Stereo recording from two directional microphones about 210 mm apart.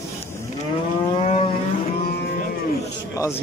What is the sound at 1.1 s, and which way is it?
Vehicle, 30° left (ahead or behind).